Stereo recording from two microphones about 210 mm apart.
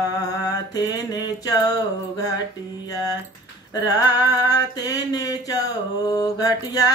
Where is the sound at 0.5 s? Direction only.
20° left (ahead or behind).